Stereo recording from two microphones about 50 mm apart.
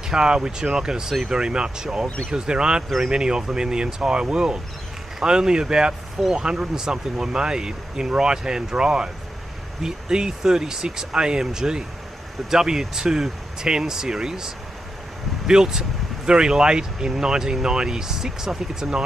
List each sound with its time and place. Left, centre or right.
0.1 s speech: centre